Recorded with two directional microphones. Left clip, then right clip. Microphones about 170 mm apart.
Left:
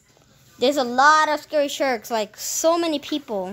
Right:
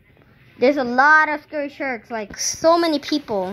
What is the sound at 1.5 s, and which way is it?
Speech, 55° left (ahead or behind).